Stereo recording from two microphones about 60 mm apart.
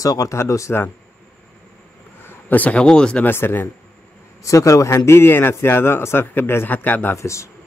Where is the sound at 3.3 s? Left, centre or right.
Left.